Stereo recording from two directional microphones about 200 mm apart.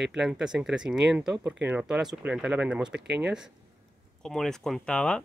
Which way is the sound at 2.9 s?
60° right (ahead or behind).